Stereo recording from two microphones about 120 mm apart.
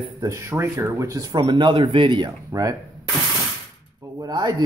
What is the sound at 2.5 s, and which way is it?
Speech, 30° right (ahead or behind).